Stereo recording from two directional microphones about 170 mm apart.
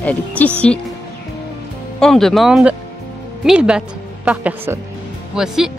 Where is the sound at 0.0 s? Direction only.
10° left (ahead or behind).